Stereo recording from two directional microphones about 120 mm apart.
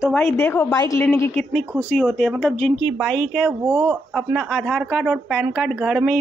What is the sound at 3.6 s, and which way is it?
Speech, 20° right (ahead or behind).